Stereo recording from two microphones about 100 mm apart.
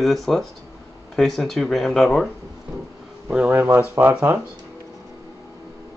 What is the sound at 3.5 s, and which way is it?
Speech, 25° right (ahead or behind).